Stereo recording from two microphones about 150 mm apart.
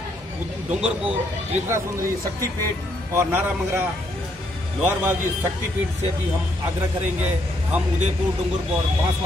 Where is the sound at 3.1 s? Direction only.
15° right (ahead or behind).